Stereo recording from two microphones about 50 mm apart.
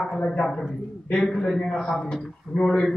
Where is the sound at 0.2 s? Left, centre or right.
Centre.